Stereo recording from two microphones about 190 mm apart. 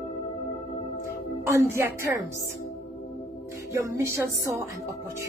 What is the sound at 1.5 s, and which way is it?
Speech, 15° right (ahead or behind).